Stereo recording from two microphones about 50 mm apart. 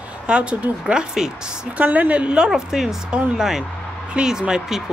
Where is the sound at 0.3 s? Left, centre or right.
Right.